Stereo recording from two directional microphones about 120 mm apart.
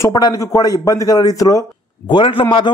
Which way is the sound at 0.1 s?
30° left (ahead or behind).